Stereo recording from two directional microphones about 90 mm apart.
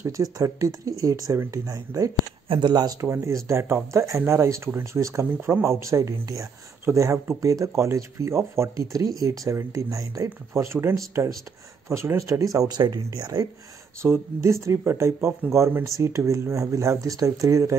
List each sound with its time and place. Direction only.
0.2 s speech: 40° right (ahead or behind)
2.4 s speech: 65° right (ahead or behind)
3.0 s speech: 30° right (ahead or behind); by 13.5 s 45° right (ahead or behind)
14.0 s speech: 20° right (ahead or behind)
14.4 s speech: 30° right (ahead or behind)
15.4 s speech: 15° right (ahead or behind)
15.8 s speech: 35° right (ahead or behind)